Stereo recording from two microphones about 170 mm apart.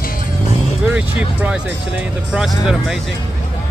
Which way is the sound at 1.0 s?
10° right (ahead or behind).